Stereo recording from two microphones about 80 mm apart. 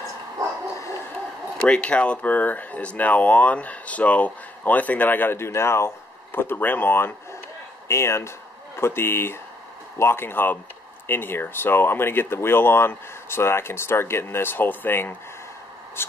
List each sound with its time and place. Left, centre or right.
0.4 s bow-wow: right
1.6 s speech: centre; by 16.1 s left